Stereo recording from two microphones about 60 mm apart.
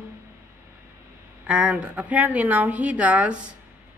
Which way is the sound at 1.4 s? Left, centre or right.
Right.